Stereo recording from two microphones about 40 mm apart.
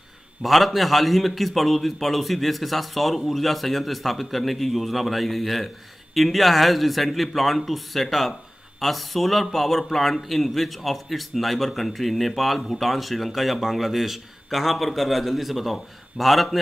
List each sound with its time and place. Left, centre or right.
0.4 s a man's voice: centre